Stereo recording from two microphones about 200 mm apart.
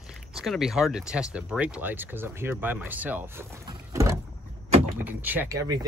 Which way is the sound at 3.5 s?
15° right (ahead or behind).